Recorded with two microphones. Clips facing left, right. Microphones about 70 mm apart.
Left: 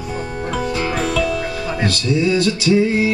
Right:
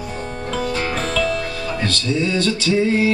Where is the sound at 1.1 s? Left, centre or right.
Centre.